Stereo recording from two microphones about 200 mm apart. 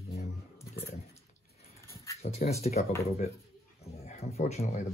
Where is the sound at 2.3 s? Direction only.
30° left (ahead or behind).